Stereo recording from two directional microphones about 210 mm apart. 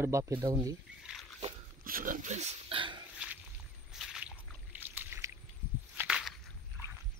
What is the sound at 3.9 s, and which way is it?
Boat, centre (ahead or behind).